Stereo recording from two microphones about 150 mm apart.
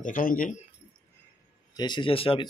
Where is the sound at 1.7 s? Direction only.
30° left (ahead or behind).